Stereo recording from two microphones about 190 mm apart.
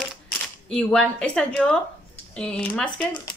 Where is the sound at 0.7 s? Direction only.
5° left (ahead or behind).